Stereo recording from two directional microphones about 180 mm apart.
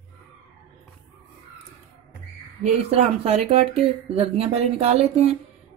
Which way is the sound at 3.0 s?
35° right (ahead or behind).